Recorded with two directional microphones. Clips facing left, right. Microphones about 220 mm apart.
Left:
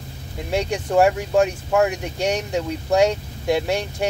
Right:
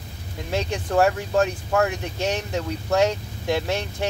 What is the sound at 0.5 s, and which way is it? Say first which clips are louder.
Speech: left 3 dB; 15° left (ahead or behind).